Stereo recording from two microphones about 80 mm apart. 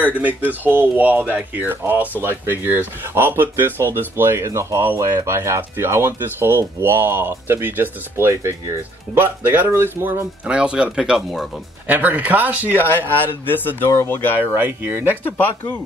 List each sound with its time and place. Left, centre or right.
0.0 s speech: right
10.4 s speech: centre
11.9 s speech: centre
13.2 s a man's voice: left
14.4 s speech: right
15.2 s a man's voice: left